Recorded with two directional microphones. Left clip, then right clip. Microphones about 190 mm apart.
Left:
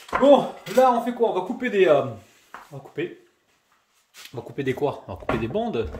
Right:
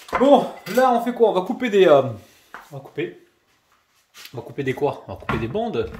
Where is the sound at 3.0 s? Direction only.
5° left (ahead or behind).